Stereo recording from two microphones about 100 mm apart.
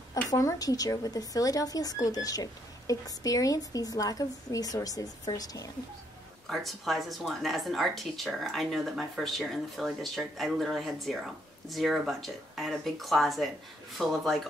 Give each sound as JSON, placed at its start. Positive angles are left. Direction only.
{"t": 0.1, "sound": "a woman's voice", "side_deg": 35}
{"t": 6.5, "sound": "speech", "side_deg": 0}